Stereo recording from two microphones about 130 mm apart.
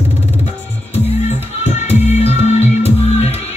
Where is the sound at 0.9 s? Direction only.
55° left (ahead or behind).